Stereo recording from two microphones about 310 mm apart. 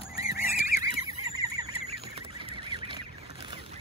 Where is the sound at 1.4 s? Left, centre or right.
Centre.